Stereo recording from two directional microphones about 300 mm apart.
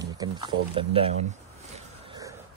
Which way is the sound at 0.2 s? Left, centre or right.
Centre.